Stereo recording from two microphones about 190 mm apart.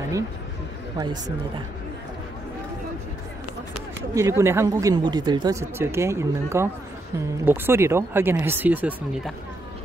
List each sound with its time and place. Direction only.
0.9 s speech: 20° right (ahead or behind)
4.1 s speech: 15° right (ahead or behind)